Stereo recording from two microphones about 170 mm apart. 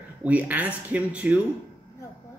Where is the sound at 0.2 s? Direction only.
10° right (ahead or behind).